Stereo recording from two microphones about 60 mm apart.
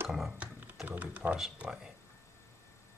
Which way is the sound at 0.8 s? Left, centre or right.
Right.